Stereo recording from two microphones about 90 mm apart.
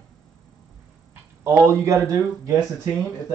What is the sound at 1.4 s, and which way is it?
Speech, 35° right (ahead or behind).